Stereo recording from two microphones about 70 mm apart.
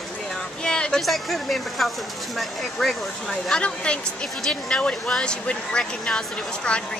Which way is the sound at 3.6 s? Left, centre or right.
Centre.